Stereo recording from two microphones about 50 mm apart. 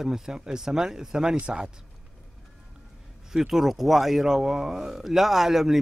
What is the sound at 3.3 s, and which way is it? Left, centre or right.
Speech, centre.